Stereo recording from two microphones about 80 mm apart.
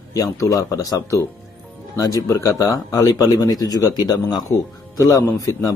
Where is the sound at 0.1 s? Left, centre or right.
Left.